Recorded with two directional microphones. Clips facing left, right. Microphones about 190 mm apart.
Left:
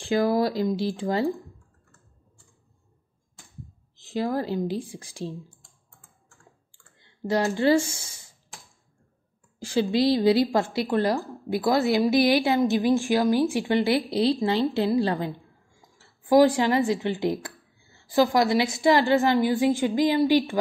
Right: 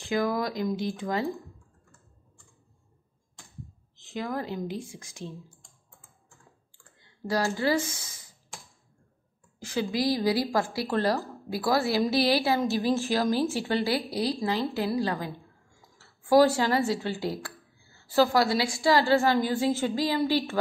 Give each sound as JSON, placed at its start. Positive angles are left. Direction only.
{"t": 0.0, "sound": "a woman's voice", "side_deg": 30}
{"t": 3.9, "sound": "a woman's voice", "side_deg": 35}
{"t": 7.2, "sound": "a woman's voice", "side_deg": 25}
{"t": 9.6, "sound": "a woman's voice", "side_deg": 30}
{"t": 16.0, "sound": "a woman's voice", "side_deg": 15}